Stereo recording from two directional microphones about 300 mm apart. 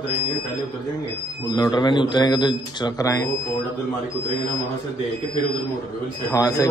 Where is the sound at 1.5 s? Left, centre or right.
Centre.